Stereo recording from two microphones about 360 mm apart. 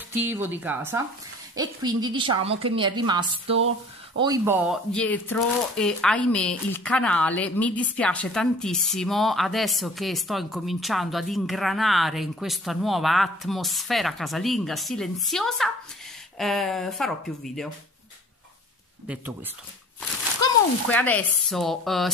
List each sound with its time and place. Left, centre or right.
0.1 s a woman's voice: centre
3.5 s a sound: right
4.2 s speech: centre
19.0 s speech: centre